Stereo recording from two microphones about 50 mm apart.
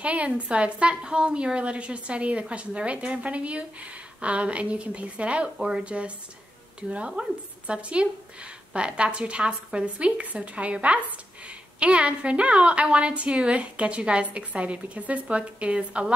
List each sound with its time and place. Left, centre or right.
0.0 s a woman's voice: right